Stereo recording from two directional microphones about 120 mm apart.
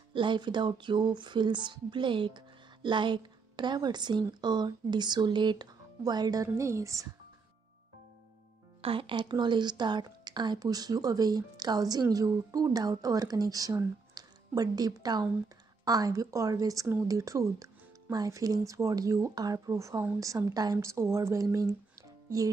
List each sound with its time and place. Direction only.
0.1 s speech: 40° right (ahead or behind); by 7.1 s 25° right (ahead or behind)
8.8 s speech: 45° right (ahead or behind); by 21.6 s 25° right (ahead or behind)